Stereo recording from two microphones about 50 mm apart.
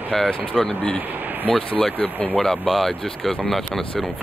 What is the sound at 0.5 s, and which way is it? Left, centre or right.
Speech, centre.